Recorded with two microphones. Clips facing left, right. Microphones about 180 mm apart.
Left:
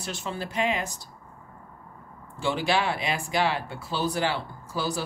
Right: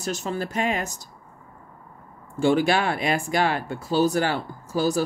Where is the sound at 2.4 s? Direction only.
50° right (ahead or behind).